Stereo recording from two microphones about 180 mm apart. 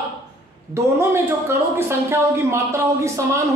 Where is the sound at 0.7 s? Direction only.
15° right (ahead or behind).